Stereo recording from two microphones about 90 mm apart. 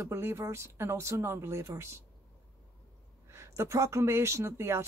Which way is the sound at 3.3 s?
30° right (ahead or behind).